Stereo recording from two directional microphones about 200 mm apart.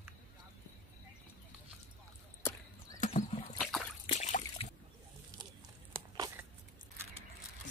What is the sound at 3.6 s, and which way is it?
Splash, centre (ahead or behind).